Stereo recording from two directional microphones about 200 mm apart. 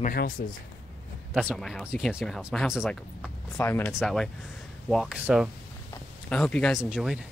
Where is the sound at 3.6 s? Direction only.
10° left (ahead or behind).